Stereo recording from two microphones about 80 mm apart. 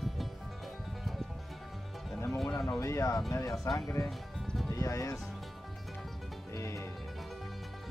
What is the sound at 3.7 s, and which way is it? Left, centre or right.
Speech, left.